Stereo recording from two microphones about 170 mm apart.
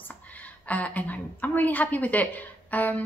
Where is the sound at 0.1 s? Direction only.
10° left (ahead or behind).